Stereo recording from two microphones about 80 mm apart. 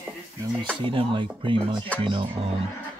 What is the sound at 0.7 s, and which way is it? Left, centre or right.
Speech, right.